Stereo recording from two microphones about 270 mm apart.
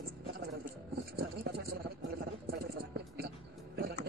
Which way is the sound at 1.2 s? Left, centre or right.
Right.